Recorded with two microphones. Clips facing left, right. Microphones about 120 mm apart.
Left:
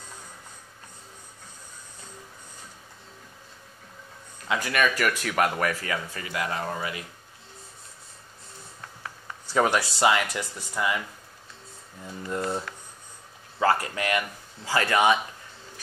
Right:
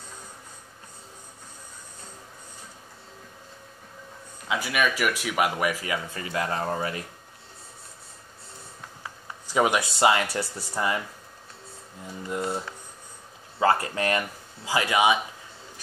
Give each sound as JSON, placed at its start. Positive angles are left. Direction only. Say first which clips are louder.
{"t": 4.5, "sound": "speech", "louder": "left 1 dB", "side_deg": -5}
{"t": 6.1, "sound": "speech", "louder": "right 2 dB", "side_deg": -30}
{"t": 9.0, "sound": "speech", "louder": "left 1 dB", "side_deg": -10}
{"t": 12.3, "sound": "speech", "louder": "even", "side_deg": -10}
{"t": 13.6, "sound": "speech", "louder": "right 1 dB", "side_deg": -25}
{"t": 14.6, "sound": "speech", "louder": "even", "side_deg": -15}